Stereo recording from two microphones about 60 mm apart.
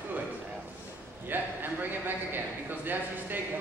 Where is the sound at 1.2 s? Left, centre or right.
Right.